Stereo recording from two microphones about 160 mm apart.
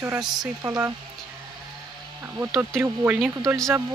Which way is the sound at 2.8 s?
15° right (ahead or behind).